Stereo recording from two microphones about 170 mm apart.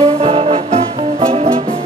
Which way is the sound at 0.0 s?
35° right (ahead or behind).